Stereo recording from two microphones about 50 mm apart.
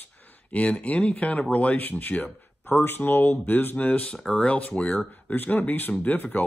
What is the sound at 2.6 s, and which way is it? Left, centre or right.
Speech, left.